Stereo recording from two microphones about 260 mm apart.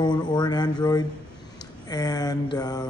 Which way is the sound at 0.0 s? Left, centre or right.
Centre.